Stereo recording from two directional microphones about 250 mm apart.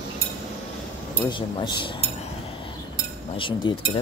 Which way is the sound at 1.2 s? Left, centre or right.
Centre.